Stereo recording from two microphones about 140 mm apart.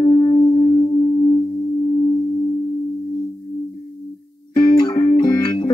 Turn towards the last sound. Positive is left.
turn(degrees=30)  # may be behind; listen again after turning